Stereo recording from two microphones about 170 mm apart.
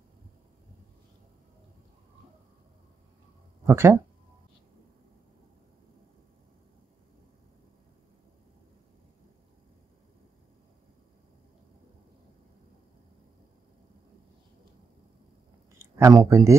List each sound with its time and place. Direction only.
3.6 s speech: 15° right (ahead or behind)
15.8 s speech: 20° right (ahead or behind)